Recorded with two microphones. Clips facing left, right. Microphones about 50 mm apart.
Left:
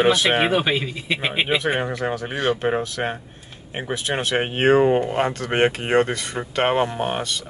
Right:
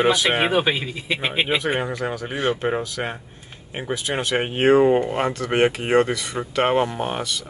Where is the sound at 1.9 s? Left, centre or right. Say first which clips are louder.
Left 2 dB; left.